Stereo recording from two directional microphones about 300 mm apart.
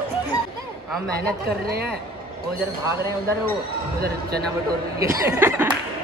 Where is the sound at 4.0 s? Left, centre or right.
Right.